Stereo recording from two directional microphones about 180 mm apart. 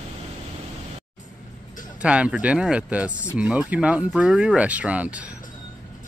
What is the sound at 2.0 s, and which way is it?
Speech, 5° right (ahead or behind).